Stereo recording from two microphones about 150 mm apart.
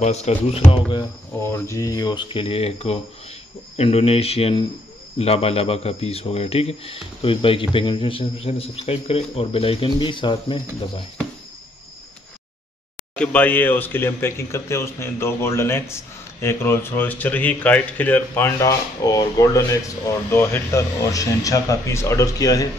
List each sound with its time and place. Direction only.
0.0 s speech: 45° left (ahead or behind)
1.4 s a man's voice: 20° left (ahead or behind)
13.1 s a man's voice: 10° left (ahead or behind); by 22.7 s 25° left (ahead or behind)